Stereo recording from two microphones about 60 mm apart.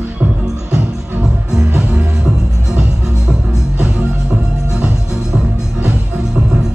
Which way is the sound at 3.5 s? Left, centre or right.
Centre.